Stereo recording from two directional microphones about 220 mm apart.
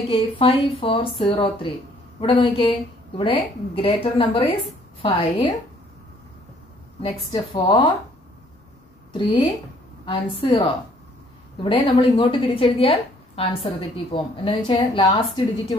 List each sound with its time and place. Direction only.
0.1 s a woman's voice: 25° left (ahead or behind)
7.5 s a woman's voice: 20° left (ahead or behind)
9.1 s a woman's voice: 20° left (ahead or behind)
11.6 s a woman's voice: 25° left (ahead or behind)